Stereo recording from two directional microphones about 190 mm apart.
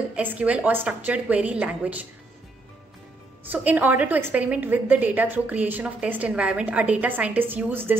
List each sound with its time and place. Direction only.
0.1 s a woman's voice: 10° right (ahead or behind)
3.4 s a woman's voice: 10° right (ahead or behind)